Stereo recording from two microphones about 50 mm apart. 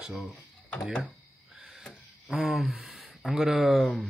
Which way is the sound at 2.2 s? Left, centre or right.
Centre.